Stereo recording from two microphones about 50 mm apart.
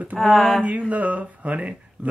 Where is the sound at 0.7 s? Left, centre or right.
Right.